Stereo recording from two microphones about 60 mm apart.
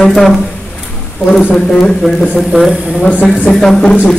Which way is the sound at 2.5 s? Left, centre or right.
Centre.